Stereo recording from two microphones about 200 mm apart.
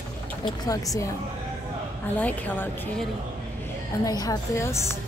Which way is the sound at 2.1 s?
10° left (ahead or behind).